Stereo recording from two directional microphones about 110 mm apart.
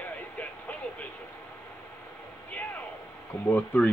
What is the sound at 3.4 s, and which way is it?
Speech, 15° left (ahead or behind).